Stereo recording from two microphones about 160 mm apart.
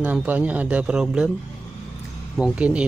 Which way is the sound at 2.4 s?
5° right (ahead or behind).